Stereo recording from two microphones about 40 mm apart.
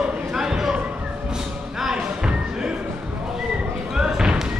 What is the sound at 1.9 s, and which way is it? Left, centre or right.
Thump, right.